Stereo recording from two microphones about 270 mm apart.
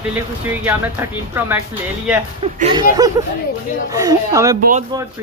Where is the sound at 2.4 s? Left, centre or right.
Centre.